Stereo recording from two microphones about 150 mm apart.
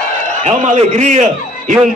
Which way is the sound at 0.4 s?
50° right (ahead or behind).